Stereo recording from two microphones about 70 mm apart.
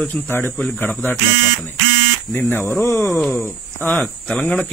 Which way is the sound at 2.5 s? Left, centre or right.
Left.